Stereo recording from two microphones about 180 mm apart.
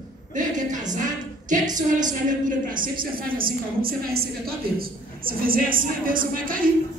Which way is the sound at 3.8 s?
55° right (ahead or behind).